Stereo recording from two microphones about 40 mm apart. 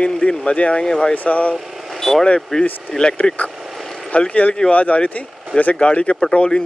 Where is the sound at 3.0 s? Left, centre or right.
Left.